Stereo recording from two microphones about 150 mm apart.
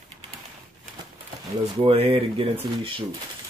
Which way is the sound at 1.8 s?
40° right (ahead or behind).